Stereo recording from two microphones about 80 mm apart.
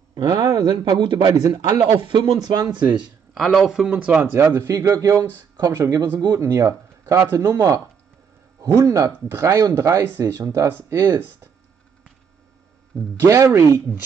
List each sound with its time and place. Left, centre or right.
0.1 s a man's voice: right
3.3 s speech: centre
4.2 s speech: right
6.1 s speech: right
6.4 s speech: right
13.2 s speech: right